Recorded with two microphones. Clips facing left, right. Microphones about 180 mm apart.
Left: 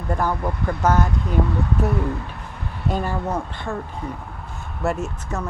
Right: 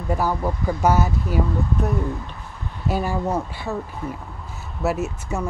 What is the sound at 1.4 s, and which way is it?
Speech, 70° left (ahead or behind).